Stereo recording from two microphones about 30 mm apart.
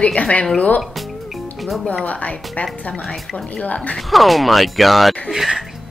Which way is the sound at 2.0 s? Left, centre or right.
Left.